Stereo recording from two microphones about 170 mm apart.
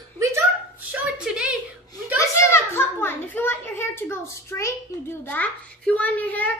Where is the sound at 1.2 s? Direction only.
5° right (ahead or behind).